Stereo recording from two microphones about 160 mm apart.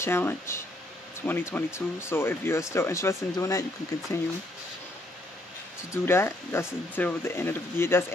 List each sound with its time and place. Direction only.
0.0 s speech: 15° left (ahead or behind)
6.0 s speech: 15° left (ahead or behind)